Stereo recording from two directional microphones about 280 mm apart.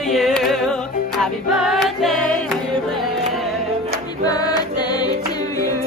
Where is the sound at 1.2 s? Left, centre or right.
Centre.